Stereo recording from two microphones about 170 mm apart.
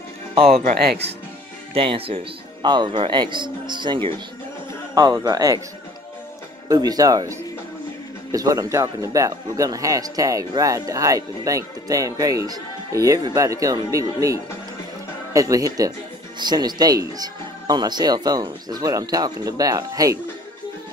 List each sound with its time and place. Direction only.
0.3 s speech: 35° right (ahead or behind)
0.7 s speech: 65° right (ahead or behind)
1.7 s speech: 35° right (ahead or behind)
6.7 s speech: 20° right (ahead or behind)